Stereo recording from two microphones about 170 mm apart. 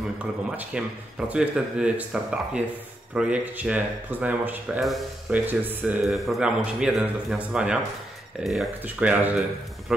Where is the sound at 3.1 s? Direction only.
10° right (ahead or behind).